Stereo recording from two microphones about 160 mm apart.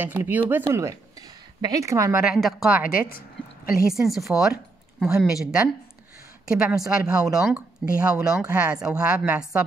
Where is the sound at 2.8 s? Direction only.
65° left (ahead or behind).